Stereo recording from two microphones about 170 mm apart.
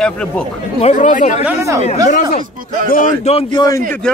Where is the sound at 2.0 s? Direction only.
50° left (ahead or behind).